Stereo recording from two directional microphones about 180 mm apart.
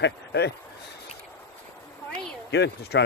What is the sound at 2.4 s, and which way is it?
Speech, 70° left (ahead or behind).